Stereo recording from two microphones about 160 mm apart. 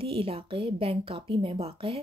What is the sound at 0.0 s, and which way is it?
Speech, 35° right (ahead or behind).